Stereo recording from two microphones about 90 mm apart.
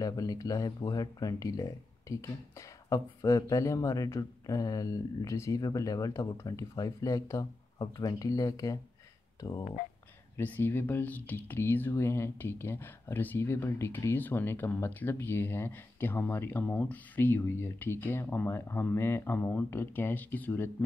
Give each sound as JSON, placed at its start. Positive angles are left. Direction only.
{"t": 0.0, "sound": "speech", "side_deg": 45}
{"t": 10.4, "sound": "speech", "side_deg": 20}